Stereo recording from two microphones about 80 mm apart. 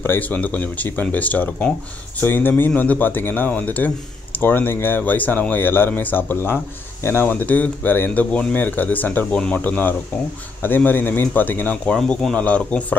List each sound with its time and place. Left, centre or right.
0.0 s speech: left
7.2 s speech: left